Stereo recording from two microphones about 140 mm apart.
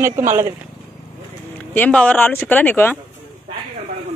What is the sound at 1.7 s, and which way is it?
Speech, 10° left (ahead or behind).